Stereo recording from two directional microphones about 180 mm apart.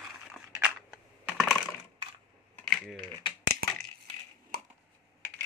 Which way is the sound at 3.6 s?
55° right (ahead or behind).